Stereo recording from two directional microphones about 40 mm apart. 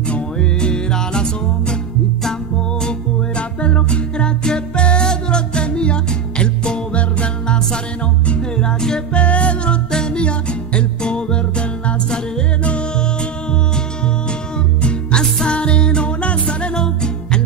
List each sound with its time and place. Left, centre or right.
0.1 s music: left
3.3 s music: left
9.2 s music: left
9.8 s music: centre
14.8 s music: left